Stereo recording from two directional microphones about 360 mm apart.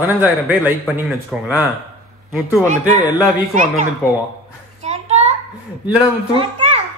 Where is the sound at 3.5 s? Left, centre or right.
Right.